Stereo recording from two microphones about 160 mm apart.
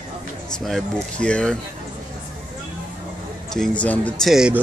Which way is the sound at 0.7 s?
Centre (ahead or behind).